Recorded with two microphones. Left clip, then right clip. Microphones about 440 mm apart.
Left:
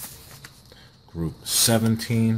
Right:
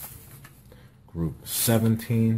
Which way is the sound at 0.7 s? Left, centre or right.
Centre.